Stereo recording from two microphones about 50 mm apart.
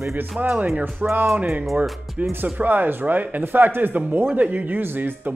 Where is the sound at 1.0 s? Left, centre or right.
Right.